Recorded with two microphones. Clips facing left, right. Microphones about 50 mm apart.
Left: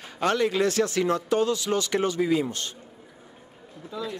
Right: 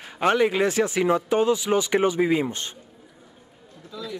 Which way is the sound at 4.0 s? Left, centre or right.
Left.